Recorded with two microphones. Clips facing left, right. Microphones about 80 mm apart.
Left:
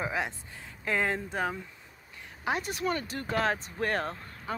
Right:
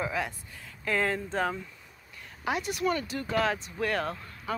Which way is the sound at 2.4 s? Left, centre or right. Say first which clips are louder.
Right 2 dB; left.